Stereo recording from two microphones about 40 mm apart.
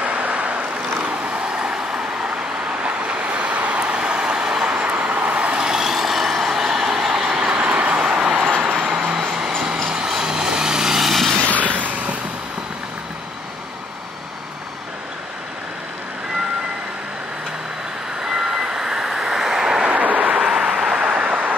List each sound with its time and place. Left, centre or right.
0.0 s vehicle: right; by 2.0 s centre
2.8 s vehicle: right
4.0 s vehicle: right
4.7 s vehicle: right
5.6 s vehicle: centre; by 9.1 s right
10.0 s vehicle: centre
11.5 s vehicle: right
18.3 s vehicle: centre
19.8 s vehicle: right
20.3 s vehicle: centre
21.0 s vehicle: right